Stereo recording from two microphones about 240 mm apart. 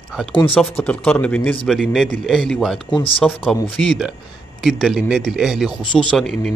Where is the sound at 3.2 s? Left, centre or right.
Centre.